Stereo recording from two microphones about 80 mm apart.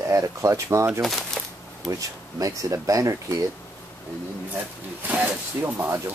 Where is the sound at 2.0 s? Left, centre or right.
Right.